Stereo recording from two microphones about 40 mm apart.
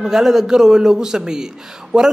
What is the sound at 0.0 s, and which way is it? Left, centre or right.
A man's voice, centre.